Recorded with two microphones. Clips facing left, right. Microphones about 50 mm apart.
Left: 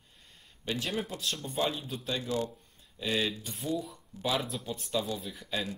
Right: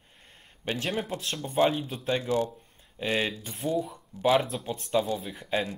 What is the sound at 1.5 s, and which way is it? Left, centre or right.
Speech, right.